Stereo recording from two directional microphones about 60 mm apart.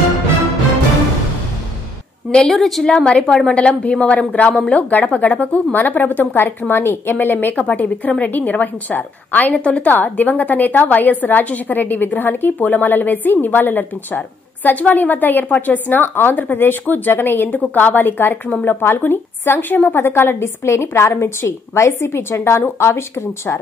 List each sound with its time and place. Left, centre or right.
2.5 s a woman's voice: centre
2.9 s a woman's voice: centre; by 23.6 s left